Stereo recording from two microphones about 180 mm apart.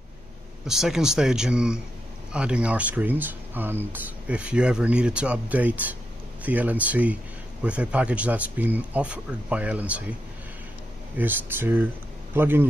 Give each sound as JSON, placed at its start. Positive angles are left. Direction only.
{"t": 0.7, "sound": "speech", "side_deg": 0}
{"t": 11.1, "sound": "speech", "side_deg": -10}